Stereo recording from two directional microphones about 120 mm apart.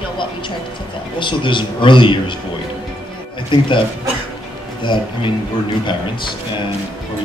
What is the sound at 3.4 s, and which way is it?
Speech, 45° left (ahead or behind).